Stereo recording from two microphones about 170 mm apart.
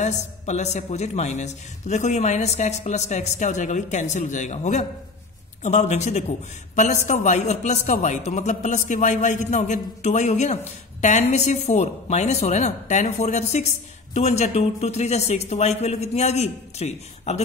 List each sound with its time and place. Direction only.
0.0 s a man's voice: 45° left (ahead or behind)